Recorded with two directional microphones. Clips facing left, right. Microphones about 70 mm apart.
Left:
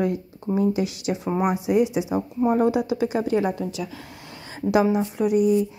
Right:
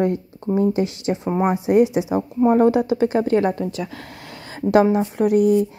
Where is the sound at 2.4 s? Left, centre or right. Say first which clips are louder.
Right 5 dB; right.